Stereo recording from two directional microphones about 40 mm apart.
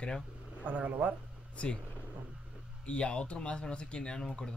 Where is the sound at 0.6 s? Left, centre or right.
Right.